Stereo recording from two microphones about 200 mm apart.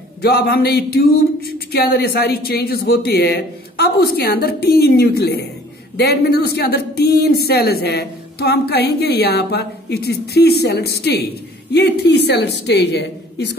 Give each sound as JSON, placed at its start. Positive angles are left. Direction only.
{"t": 0.2, "sound": "a woman's voice", "side_deg": 50}